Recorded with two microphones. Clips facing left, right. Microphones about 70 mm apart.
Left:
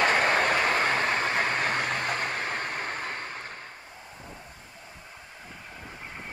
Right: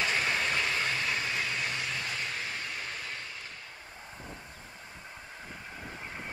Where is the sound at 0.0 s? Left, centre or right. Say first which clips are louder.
Left 7 dB; left.